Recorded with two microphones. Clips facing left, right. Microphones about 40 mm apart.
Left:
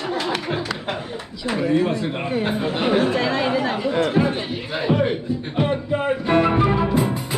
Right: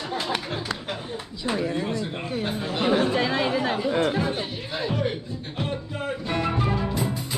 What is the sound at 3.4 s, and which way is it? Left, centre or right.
Chatter, centre.